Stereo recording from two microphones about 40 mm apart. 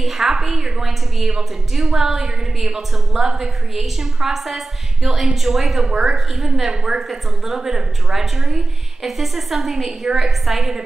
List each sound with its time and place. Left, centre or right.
0.0 s a woman's voice: centre
5.9 s a woman's voice: centre
6.1 s a woman's voice: centre